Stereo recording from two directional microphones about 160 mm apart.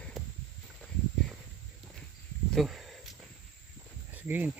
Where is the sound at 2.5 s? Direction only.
Centre (ahead or behind).